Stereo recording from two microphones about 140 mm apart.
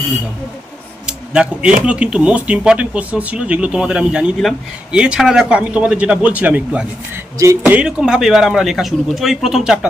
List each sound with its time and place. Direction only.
1.0 s a sound: 5° right (ahead or behind)
1.9 s a man's voice: 10° right (ahead or behind)
7.8 s a man's voice: 5° right (ahead or behind)